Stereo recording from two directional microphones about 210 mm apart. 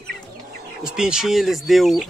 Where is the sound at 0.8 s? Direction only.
5° right (ahead or behind).